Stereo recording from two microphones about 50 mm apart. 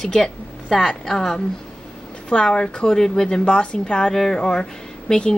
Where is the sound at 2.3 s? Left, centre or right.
Centre.